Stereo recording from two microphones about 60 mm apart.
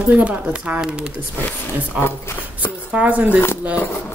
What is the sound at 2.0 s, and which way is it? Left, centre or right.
Speech, left.